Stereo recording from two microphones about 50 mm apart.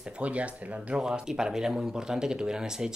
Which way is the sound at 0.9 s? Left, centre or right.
Centre.